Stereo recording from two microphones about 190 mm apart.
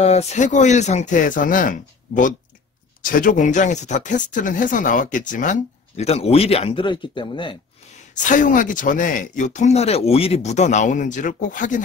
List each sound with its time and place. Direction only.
0.0 s speech: 35° left (ahead or behind)
8.1 s speech: 40° left (ahead or behind)